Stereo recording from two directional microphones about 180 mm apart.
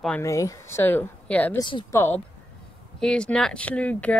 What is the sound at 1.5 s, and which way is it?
Speech, 25° left (ahead or behind).